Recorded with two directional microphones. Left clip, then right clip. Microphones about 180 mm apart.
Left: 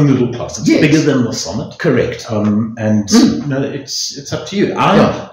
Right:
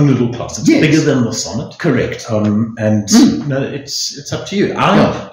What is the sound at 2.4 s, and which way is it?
Speech, 25° right (ahead or behind).